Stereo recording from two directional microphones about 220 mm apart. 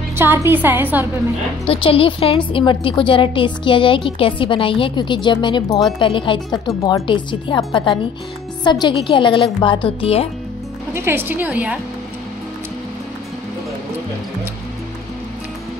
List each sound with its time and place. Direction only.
0.1 s a woman's voice: 10° right (ahead or behind)
1.7 s a woman's voice: 25° left (ahead or behind)
10.9 s a woman's voice: 10° right (ahead or behind)